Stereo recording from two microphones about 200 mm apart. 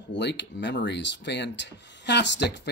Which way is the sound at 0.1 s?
60° left (ahead or behind).